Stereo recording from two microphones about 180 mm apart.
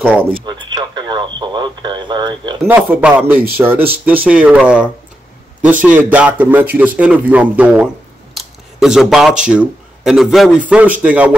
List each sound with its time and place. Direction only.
0.0 s speech: 10° right (ahead or behind)
0.3 s speech: 25° right (ahead or behind)
2.6 s speech: 10° right (ahead or behind)